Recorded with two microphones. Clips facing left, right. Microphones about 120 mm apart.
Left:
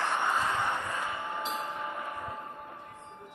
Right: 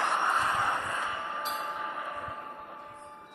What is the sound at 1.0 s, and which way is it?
Train, 15° left (ahead or behind).